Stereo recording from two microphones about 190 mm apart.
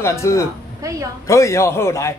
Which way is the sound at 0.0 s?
15° left (ahead or behind).